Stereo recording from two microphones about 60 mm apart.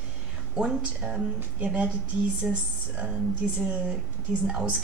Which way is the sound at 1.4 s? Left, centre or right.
Right.